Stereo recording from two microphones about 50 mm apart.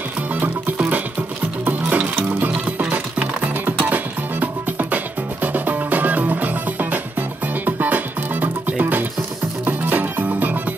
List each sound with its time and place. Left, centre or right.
0.3 s music: right